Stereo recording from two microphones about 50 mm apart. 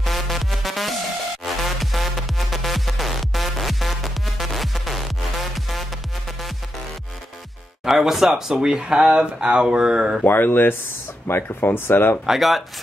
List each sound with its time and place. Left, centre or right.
0.0 s music: centre
7.8 s speech: centre
10.2 s speech: left
12.3 s speech: centre